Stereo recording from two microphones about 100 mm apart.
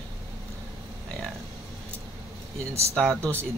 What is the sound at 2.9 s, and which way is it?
Speech, 5° left (ahead or behind).